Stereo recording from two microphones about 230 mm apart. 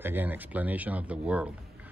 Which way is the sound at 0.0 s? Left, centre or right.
Centre.